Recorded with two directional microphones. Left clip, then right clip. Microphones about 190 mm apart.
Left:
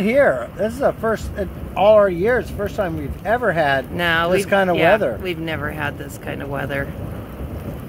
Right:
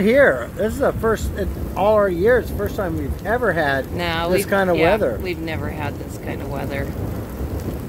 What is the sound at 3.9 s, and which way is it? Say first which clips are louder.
Speech: left 3 dB; 45° left (ahead or behind).